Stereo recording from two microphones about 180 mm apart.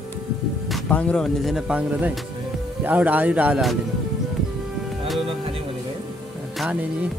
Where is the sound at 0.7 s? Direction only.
5° left (ahead or behind).